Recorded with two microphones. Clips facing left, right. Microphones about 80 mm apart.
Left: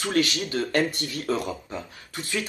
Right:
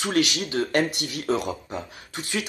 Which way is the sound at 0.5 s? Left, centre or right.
Centre.